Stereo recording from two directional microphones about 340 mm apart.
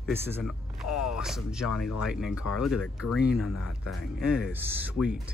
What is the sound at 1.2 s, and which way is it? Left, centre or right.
Speech, centre.